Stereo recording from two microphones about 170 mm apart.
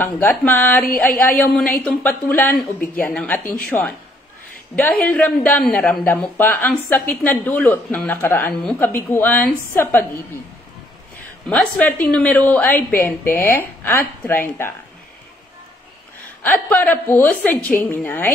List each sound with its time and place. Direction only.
0.0 s a woman's voice: 10° left (ahead or behind)
11.4 s a woman's voice: 5° left (ahead or behind)
16.4 s a woman's voice: 10° left (ahead or behind)